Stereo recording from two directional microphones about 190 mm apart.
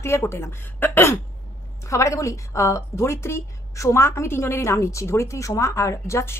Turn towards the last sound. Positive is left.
turn(degrees=15)  # may be behind; listen again after turning